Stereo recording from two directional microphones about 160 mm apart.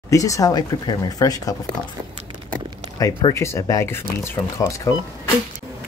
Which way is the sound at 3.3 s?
20° left (ahead or behind).